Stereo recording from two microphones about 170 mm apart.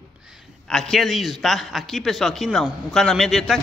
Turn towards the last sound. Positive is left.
turn(degrees=0)  # may be behind; listen again after turning